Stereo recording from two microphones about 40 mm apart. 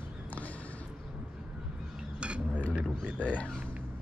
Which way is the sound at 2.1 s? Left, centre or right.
Right.